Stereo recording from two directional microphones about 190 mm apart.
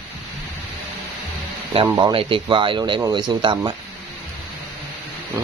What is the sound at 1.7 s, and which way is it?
Speech, 25° right (ahead or behind).